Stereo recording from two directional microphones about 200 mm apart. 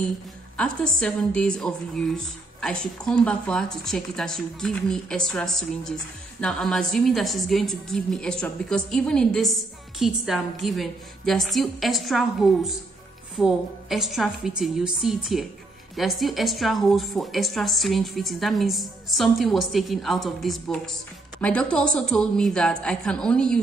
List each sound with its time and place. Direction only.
0.6 s a woman's voice: 5° left (ahead or behind)